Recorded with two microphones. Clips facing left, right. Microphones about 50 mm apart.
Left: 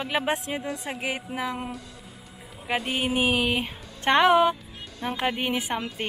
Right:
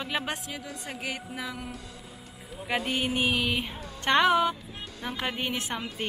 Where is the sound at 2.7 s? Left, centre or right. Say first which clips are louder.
Left 2 dB; centre.